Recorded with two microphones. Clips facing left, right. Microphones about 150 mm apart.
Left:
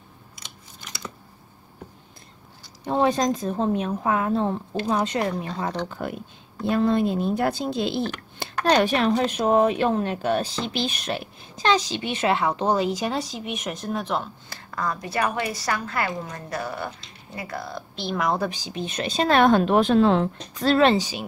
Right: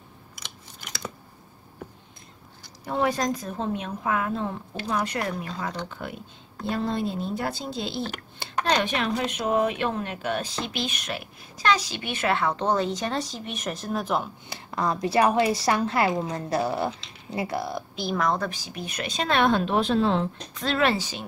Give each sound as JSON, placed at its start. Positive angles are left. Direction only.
{"t": 2.8, "sound": "speech", "side_deg": 25}
{"t": 3.5, "sound": "a woman's voice", "side_deg": 35}
{"t": 6.0, "sound": "a woman's voice", "side_deg": 45}
{"t": 6.7, "sound": "speech", "side_deg": 55}
{"t": 8.6, "sound": "speech", "side_deg": 40}
{"t": 14.5, "sound": "a woman's voice", "side_deg": -20}
{"t": 18.1, "sound": "speech", "side_deg": 5}
{"t": 19.3, "sound": "a woman's voice", "side_deg": 45}
{"t": 20.5, "sound": "a woman's voice", "side_deg": 40}
{"t": 20.8, "sound": "speech", "side_deg": 15}